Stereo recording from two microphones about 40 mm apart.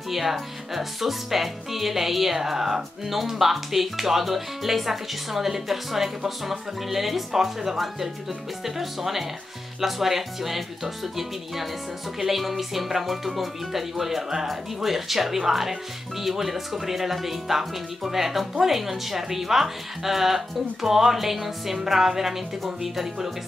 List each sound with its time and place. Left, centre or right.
0.1 s a woman's voice: centre